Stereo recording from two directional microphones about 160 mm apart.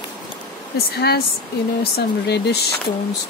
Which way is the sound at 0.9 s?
85° left.